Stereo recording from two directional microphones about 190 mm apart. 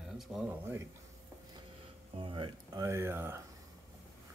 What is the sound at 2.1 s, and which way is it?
Speech, 25° right (ahead or behind).